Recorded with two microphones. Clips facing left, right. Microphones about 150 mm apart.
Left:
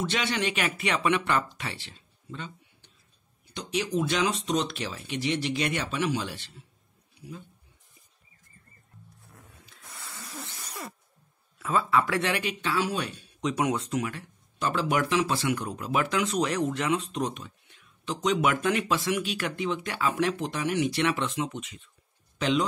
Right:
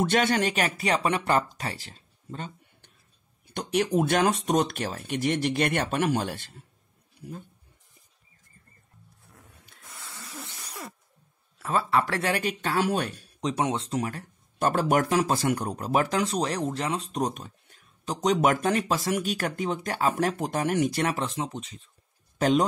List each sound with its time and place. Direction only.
0.0 s speech: 50° right (ahead or behind)
3.5 s speech: 55° right (ahead or behind)
11.6 s speech: 35° right (ahead or behind)
13.4 s speech: 30° right (ahead or behind)
22.4 s speech: 45° right (ahead or behind)